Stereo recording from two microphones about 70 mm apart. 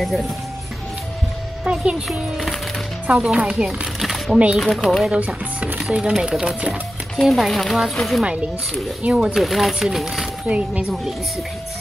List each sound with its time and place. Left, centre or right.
0.0 s speech: centre
1.6 s music: centre
3.1 s speech: centre
5.0 s speech: centre
7.2 s speech: centre
9.0 s speech: centre
9.3 s speech: centre
10.4 s speech: centre